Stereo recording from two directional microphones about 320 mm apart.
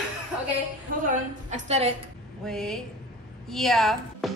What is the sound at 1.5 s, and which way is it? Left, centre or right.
Speech, centre.